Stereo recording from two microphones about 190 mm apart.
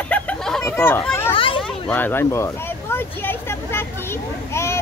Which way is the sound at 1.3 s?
30° left (ahead or behind).